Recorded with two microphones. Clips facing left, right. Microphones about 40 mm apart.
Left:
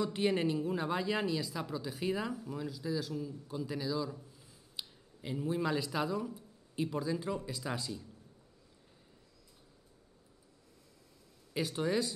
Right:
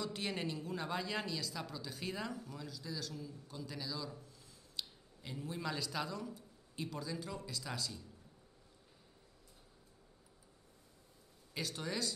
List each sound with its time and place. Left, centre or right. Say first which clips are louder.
0.0 s speech: left 9 dB; centre
11.5 s speech: left 8 dB; centre